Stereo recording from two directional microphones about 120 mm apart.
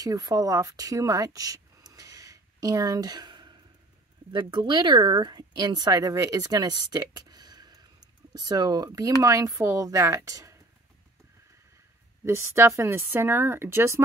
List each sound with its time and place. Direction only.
0.0 s speech: 30° right (ahead or behind)
12.3 s speech: 20° right (ahead or behind)